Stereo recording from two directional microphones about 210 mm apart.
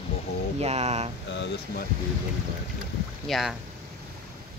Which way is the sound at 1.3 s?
55° left (ahead or behind).